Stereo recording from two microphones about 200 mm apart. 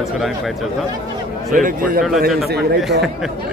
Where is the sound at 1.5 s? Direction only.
40° right (ahead or behind).